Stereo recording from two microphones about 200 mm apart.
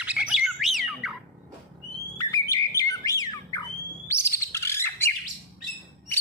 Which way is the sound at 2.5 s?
15° left (ahead or behind).